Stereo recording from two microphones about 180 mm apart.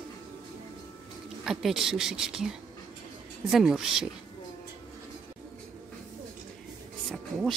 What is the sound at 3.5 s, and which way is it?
Speech, centre (ahead or behind).